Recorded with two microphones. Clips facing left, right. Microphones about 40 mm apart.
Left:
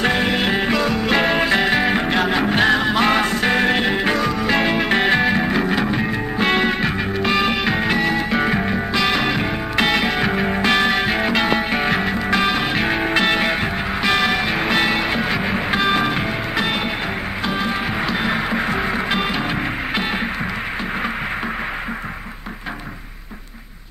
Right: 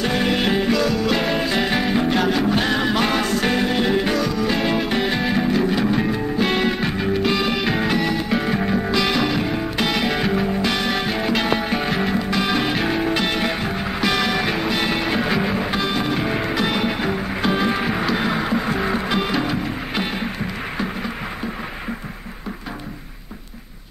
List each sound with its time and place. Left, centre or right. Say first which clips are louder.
0.1 s music: left 1 dB; centre
0.6 s music: even; left
2.7 s music: left 3 dB; centre
3.1 s music: left 3 dB; left
5.2 s music: left 1 dB; left
10.4 s music: left 4 dB; left
12.5 s music: left 1 dB; centre
12.8 s music: left 2 dB; left
17.4 s music: right 2 dB; centre
17.9 s music: even; centre